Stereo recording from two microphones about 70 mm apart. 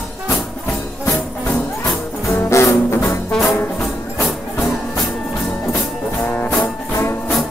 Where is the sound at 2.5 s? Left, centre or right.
Left.